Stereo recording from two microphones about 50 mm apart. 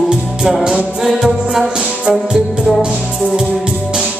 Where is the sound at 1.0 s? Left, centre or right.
Centre.